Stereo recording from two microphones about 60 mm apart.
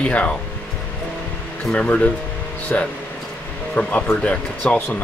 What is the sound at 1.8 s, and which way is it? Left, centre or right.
Speech, left.